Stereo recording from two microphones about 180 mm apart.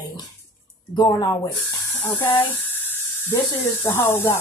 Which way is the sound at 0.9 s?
20° left (ahead or behind).